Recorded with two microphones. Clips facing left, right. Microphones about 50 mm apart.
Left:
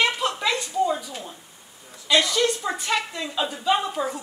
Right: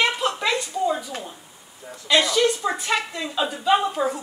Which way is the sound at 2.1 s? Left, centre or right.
Centre.